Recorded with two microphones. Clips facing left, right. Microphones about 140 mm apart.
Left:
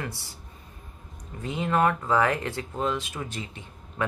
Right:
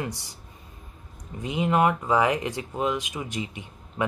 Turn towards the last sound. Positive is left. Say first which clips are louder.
# right 2 dB
turn(degrees=-15)  # may be behind; listen again after turning